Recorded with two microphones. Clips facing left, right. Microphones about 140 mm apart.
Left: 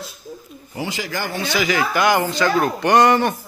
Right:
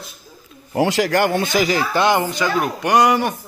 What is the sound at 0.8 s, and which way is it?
Speech, 75° right (ahead or behind).